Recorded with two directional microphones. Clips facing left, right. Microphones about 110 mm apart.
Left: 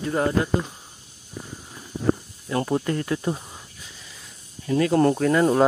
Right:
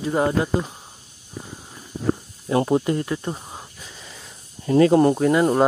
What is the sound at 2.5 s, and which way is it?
Speech, 20° right (ahead or behind).